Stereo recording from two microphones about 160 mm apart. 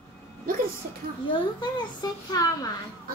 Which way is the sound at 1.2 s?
30° left (ahead or behind).